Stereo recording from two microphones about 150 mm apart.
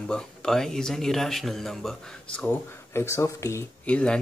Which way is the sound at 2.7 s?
15° left (ahead or behind).